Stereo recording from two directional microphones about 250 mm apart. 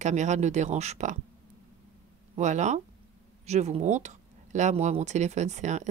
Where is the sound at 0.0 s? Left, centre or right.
Right.